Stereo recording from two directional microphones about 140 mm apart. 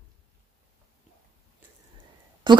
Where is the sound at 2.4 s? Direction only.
35° right (ahead or behind).